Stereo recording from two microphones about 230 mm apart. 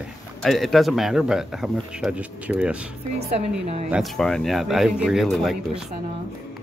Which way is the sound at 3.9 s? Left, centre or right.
Centre.